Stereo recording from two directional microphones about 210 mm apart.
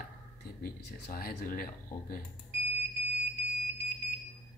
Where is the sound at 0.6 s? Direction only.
45° left (ahead or behind).